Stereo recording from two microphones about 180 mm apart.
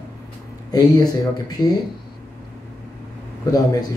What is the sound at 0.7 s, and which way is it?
Speech, 20° left (ahead or behind).